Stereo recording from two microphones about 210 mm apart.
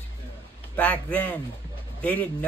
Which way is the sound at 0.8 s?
5° left (ahead or behind).